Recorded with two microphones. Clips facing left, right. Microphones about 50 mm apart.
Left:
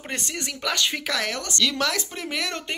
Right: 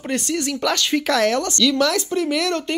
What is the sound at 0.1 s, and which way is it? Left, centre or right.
Speech, left.